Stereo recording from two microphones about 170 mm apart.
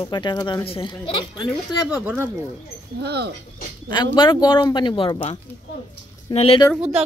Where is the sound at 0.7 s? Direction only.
35° left (ahead or behind).